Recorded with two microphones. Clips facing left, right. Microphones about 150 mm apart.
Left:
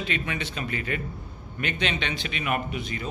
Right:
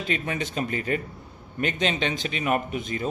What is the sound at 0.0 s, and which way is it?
A man's voice, 40° right (ahead or behind).